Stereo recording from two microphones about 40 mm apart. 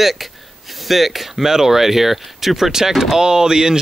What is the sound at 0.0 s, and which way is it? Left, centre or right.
Speech, centre.